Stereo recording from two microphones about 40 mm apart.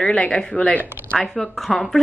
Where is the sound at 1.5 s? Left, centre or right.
Centre.